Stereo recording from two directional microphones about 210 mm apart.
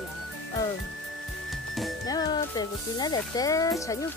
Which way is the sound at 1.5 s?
Centre (ahead or behind).